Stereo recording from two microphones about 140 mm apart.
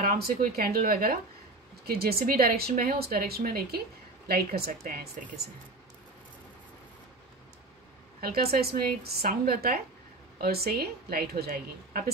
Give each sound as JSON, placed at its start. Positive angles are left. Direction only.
{"t": 0.0, "sound": "speech", "side_deg": -85}
{"t": 8.2, "sound": "speech", "side_deg": -90}